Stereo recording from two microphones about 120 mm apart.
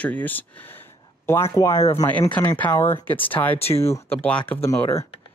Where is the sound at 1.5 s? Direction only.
25° left (ahead or behind).